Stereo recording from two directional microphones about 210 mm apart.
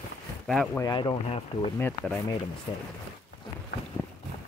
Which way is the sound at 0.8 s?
20° left (ahead or behind).